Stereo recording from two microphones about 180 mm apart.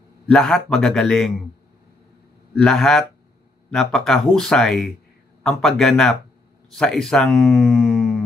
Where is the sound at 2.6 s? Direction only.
5° left (ahead or behind).